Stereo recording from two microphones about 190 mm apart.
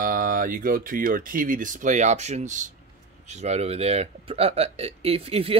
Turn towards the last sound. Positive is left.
turn(degrees=-30)  # may be behind; listen again after turning